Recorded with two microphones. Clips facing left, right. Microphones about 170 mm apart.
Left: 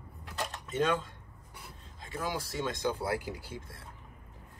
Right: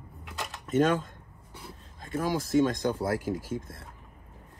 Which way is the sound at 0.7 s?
45° right (ahead or behind).